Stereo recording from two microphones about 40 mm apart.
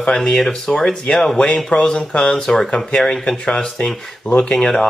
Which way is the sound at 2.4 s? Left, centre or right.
Centre.